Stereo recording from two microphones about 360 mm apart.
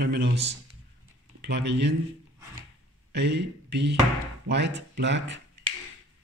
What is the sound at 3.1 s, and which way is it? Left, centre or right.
Speech, right.